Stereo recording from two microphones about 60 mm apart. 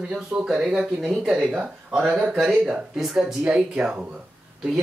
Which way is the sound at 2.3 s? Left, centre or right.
Centre.